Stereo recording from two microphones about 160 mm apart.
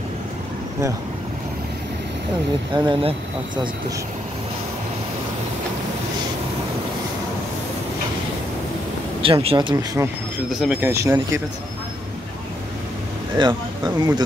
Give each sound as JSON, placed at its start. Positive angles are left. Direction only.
{"t": 2.7, "sound": "speech", "side_deg": -30}
{"t": 9.2, "sound": "speech", "side_deg": -35}
{"t": 10.5, "sound": "speech", "side_deg": -5}
{"t": 10.8, "sound": "speech", "side_deg": -15}
{"t": 13.4, "sound": "speech", "side_deg": -25}